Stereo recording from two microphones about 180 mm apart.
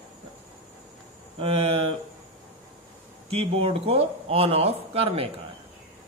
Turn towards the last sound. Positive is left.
turn(degrees=-30)  # may be behind; listen again after turning